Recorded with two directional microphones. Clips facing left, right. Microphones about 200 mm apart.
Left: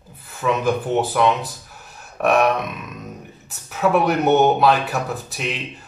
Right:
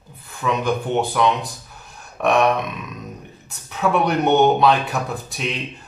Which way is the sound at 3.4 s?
5° left (ahead or behind).